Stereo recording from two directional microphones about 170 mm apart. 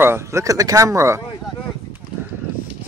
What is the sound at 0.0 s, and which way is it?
Speech, 15° right (ahead or behind).